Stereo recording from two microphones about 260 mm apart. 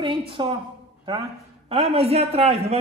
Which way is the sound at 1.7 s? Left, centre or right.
Right.